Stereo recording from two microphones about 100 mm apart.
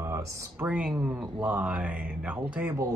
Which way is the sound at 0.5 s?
10° right (ahead or behind).